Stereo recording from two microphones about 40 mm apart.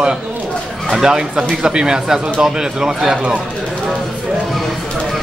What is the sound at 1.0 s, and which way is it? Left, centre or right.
Speech, centre.